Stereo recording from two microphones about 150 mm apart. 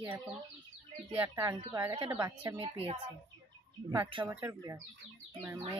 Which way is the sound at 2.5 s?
40° right (ahead or behind).